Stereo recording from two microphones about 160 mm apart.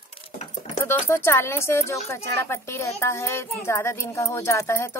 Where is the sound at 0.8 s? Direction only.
15° left (ahead or behind).